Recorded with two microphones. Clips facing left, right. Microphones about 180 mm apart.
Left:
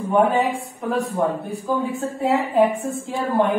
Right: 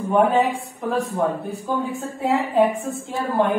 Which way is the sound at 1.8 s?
Centre (ahead or behind).